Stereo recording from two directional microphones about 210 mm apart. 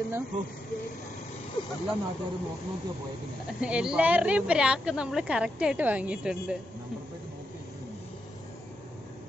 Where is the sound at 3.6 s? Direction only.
5° right (ahead or behind).